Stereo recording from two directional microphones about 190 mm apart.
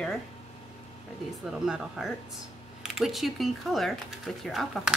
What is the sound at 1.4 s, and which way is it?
Speech, centre (ahead or behind).